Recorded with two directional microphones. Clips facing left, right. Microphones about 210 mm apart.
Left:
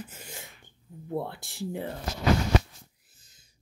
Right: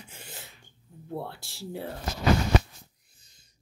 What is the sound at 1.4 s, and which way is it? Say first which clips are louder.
Speech: left 6 dB; 15° left (ahead or behind).